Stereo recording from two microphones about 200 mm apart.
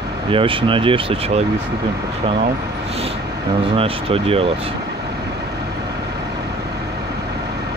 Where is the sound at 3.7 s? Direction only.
30° right (ahead or behind).